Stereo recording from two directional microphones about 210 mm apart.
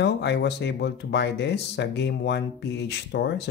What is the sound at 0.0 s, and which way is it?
Speech, 55° left (ahead or behind).